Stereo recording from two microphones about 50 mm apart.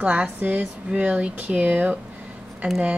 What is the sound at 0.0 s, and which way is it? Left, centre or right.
Speech, right.